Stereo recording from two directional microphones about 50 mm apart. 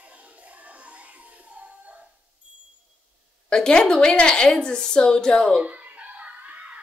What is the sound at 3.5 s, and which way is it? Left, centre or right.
A child's voice, centre.